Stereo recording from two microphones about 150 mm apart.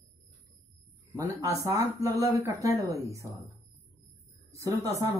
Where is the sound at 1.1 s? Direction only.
20° right (ahead or behind).